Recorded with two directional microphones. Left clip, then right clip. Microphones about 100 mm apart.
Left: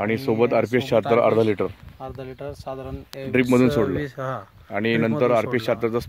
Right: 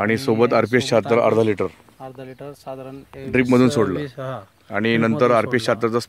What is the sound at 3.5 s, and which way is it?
Speech, 25° right (ahead or behind).